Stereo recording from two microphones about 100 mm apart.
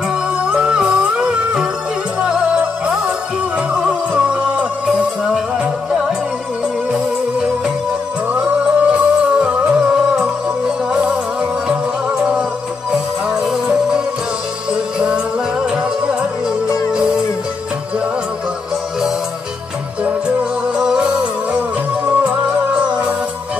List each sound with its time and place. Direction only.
0.5 s music: 10° right (ahead or behind)
3.7 s music: 10° right (ahead or behind)
12.9 s music: 10° right (ahead or behind)
16.6 s music: 30° left (ahead or behind)
20.7 s music: 10° right (ahead or behind)